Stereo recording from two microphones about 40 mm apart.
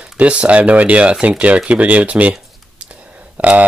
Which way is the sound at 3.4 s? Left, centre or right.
Right.